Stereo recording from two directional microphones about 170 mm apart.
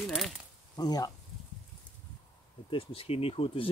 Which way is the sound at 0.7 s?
20° left (ahead or behind).